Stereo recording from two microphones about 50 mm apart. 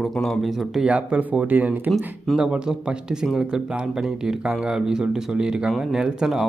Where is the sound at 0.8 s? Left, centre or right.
Right.